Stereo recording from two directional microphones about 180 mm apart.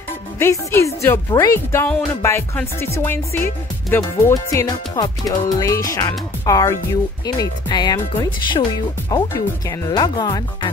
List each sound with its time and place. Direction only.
0.4 s speech: 15° left (ahead or behind)
3.9 s music: 15° left (ahead or behind)